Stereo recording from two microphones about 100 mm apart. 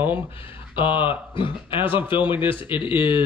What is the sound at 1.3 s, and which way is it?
Speech, 60° left (ahead or behind).